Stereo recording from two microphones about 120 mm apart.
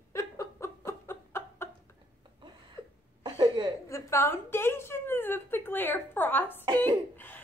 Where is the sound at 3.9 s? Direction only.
20° left (ahead or behind).